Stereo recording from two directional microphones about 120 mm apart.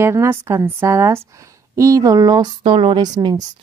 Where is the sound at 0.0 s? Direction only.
20° right (ahead or behind).